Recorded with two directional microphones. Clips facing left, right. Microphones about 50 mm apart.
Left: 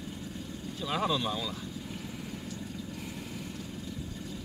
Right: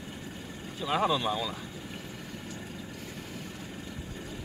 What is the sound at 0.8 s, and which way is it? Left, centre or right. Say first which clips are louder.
Speech: right 3 dB; centre.